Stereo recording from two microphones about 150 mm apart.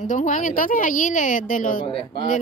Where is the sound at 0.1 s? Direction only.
55° left (ahead or behind).